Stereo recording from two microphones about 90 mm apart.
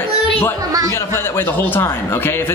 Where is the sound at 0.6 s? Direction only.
40° right (ahead or behind).